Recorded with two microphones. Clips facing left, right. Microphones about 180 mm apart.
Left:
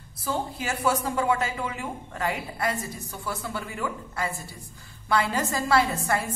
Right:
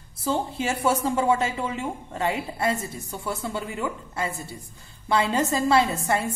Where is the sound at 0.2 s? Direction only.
25° right (ahead or behind).